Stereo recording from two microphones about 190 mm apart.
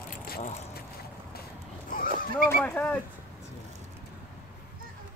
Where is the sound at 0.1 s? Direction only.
50° left (ahead or behind).